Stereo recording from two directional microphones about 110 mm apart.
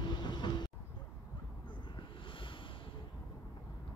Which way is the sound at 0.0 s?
45° left (ahead or behind).